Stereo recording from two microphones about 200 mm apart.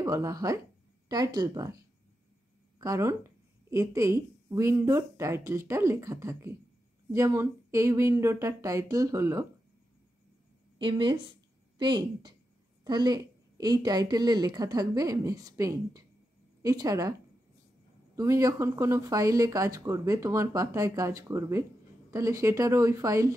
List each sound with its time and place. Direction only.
0.0 s a woman's voice: 15° right (ahead or behind)
2.8 s a woman's voice: 15° right (ahead or behind)
10.8 s a woman's voice: 25° right (ahead or behind)
18.1 s a woman's voice: 15° right (ahead or behind)